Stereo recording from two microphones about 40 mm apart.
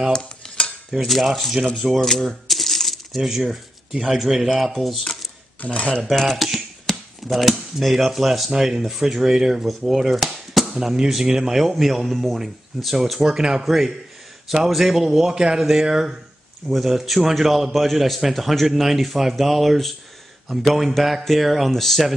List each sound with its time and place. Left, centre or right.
0.1 s cutlery: left
1.0 s speech: centre
1.7 s coin: centre
3.2 s speech: centre
5.6 s speech: left
6.0 s speech: centre
10.8 s speech: centre